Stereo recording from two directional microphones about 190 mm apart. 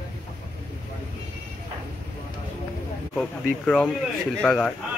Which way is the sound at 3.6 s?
10° left (ahead or behind).